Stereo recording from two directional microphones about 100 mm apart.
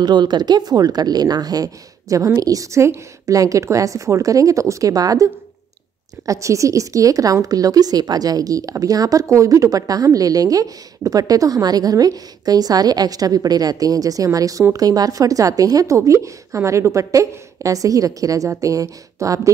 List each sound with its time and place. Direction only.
0.0 s a woman's voice: 45° right (ahead or behind)